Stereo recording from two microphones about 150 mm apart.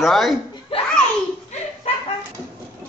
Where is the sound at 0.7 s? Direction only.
40° left (ahead or behind).